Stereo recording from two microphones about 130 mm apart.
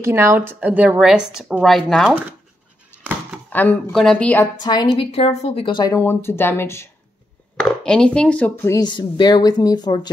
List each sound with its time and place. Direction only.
0.0 s a woman's voice: 20° right (ahead or behind); by 2.0 s centre (ahead or behind)
3.4 s a sound: 15° left (ahead or behind)
3.9 s a woman's voice: 5° left (ahead or behind)
4.6 s speech: 35° left (ahead or behind)
5.1 s speech: 50° left (ahead or behind)
5.9 s speech: 20° left (ahead or behind)
7.5 s chopping: 5° left (ahead or behind)
8.7 s speech: 35° left (ahead or behind)